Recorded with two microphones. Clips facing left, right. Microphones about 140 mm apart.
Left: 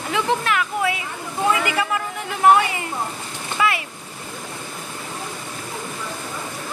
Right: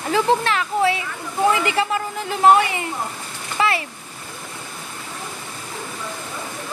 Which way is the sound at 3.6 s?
30° right (ahead or behind).